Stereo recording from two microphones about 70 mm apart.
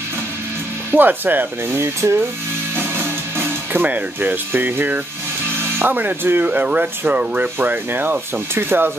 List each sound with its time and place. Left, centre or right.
0.9 s speech: right
2.7 s music: right
5.6 s speech: right